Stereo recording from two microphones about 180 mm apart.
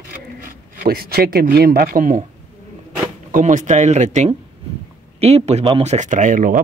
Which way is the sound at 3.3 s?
45° right (ahead or behind).